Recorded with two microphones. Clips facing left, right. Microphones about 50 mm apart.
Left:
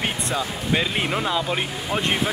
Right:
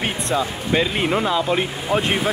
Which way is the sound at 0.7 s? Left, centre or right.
Centre.